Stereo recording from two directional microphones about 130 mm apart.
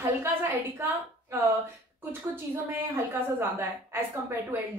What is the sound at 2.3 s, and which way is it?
A woman's voice, 15° right (ahead or behind).